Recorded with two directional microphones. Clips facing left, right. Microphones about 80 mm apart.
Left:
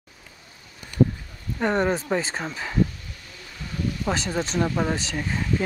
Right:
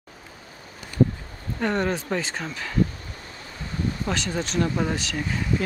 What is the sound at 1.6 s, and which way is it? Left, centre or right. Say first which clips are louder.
Speech: left 2 dB; left.